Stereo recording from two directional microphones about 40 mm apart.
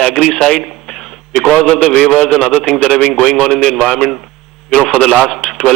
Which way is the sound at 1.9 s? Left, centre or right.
Left.